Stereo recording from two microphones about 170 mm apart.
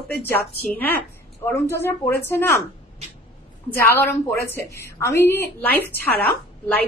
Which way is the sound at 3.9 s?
15° left (ahead or behind).